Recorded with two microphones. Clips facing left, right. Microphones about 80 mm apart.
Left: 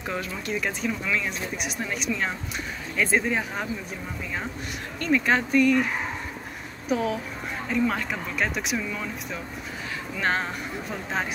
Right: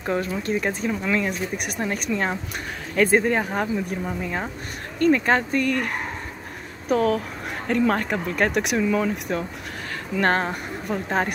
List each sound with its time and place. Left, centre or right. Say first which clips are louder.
0.0 s speech: right 6 dB; right